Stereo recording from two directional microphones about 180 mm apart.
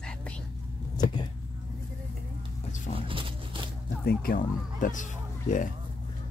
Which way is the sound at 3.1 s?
30° right (ahead or behind).